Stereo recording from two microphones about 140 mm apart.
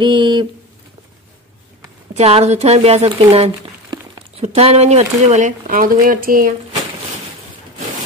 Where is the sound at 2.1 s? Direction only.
50° right (ahead or behind); by 6.5 s 80° right.